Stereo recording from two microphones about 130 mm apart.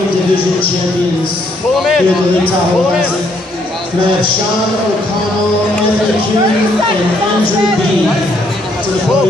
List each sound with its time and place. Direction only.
1.8 s a man's voice: centre (ahead or behind)